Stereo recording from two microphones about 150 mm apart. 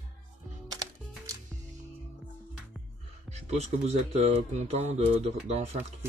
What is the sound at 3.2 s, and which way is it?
Speech, 45° right (ahead or behind).